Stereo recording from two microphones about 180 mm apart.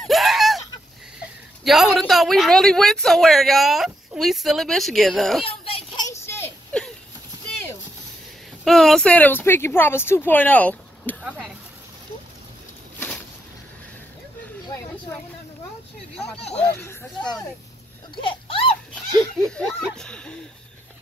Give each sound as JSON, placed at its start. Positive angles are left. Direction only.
{"t": 0.0, "sound": "a sound", "side_deg": 0}
{"t": 1.6, "sound": "a man's voice", "side_deg": 0}
{"t": 5.4, "sound": "children playing", "side_deg": 30}
{"t": 6.0, "sound": "a sound", "side_deg": 15}
{"t": 8.6, "sound": "a woman's voice", "side_deg": 0}
{"t": 11.2, "sound": "a man's voice", "side_deg": -5}
{"t": 16.3, "sound": "speech", "side_deg": 35}
{"t": 16.6, "sound": "a woman's voice", "side_deg": 5}
{"t": 18.2, "sound": "a sound", "side_deg": 30}
{"t": 19.3, "sound": "speech", "side_deg": 0}